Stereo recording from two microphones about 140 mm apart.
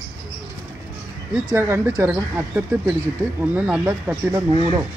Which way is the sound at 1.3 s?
15° right (ahead or behind).